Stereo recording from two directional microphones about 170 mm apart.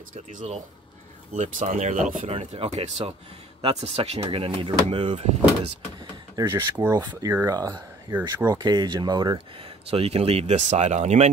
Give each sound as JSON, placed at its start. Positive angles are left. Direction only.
{"t": 0.1, "sound": "speech", "side_deg": -45}
{"t": 6.3, "sound": "speech", "side_deg": -15}
{"t": 9.8, "sound": "speech", "side_deg": -35}